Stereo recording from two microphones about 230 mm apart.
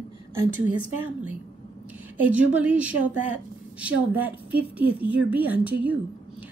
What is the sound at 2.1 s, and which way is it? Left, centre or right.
A woman's voice, centre.